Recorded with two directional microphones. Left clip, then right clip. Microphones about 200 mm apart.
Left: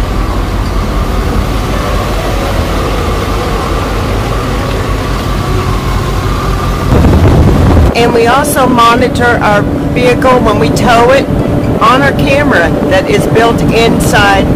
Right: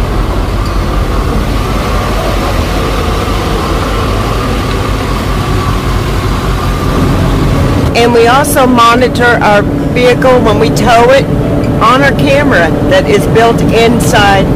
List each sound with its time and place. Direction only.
7.9 s speech: 25° right (ahead or behind)